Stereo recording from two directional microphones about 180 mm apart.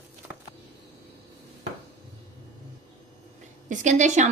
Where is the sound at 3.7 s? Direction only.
40° right (ahead or behind).